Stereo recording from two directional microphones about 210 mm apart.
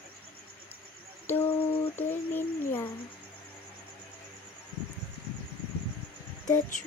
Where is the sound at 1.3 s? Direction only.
10° left (ahead or behind).